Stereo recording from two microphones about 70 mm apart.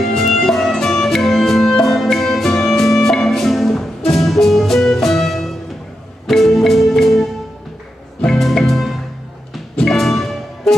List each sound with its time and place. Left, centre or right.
0.0 s music: centre